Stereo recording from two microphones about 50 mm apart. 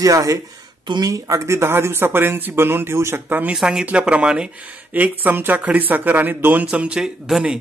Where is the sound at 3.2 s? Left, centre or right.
Right.